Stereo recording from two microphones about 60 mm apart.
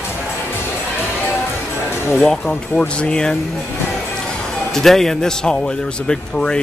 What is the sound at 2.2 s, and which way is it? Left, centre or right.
Speech, centre.